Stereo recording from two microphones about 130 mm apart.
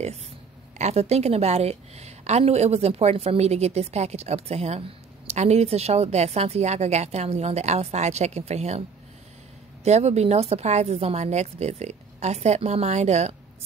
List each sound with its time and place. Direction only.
0.7 s a woman's voice: 55° right (ahead or behind)
9.8 s a woman's voice: 55° right (ahead or behind)